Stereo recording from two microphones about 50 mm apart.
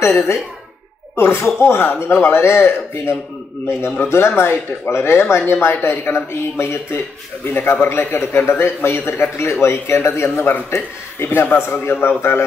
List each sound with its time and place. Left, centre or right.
0.0 s speech: left
4.1 s speech: left
7.4 s a man's voice: left